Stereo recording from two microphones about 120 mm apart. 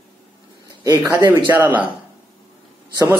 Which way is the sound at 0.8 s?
15° right (ahead or behind).